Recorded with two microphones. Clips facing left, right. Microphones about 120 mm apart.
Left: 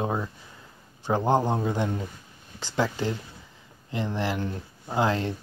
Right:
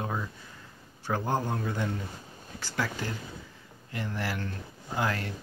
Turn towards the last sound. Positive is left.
turn(degrees=25)  # may be behind; listen again after turning